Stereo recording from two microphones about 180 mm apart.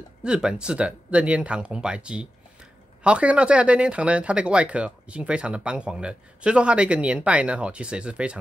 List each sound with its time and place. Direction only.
0.2 s speech: 5° right (ahead or behind)